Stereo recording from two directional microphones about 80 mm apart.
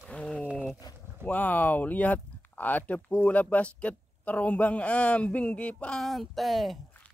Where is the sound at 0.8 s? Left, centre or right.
Left.